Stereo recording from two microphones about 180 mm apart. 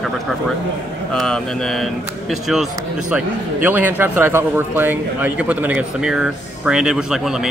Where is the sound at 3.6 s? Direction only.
10° right (ahead or behind).